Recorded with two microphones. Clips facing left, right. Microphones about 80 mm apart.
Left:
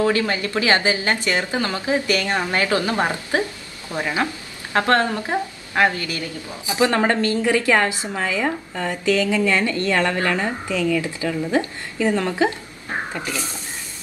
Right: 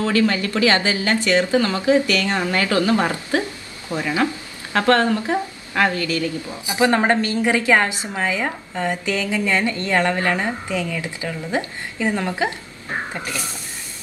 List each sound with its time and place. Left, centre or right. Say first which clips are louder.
0.0 s speech: right 1 dB; left
6.7 s a woman's voice: right 1 dB; right